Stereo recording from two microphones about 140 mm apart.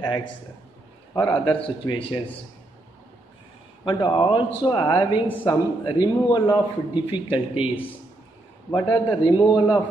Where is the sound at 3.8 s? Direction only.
35° left (ahead or behind).